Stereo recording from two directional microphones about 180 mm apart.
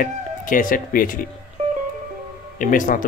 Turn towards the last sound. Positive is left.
turn(degrees=45)  # may be behind; listen again after turning